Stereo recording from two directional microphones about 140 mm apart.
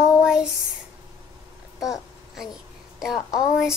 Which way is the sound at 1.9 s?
Centre (ahead or behind).